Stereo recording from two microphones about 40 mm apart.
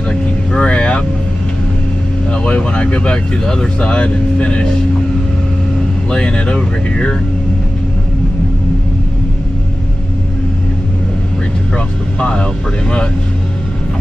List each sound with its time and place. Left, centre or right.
0.1 s vehicle: left
2.3 s speech: left
6.0 s speech: left
11.7 s speech: left